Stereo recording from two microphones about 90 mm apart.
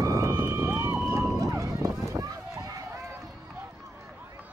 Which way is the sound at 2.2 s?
40° right (ahead or behind).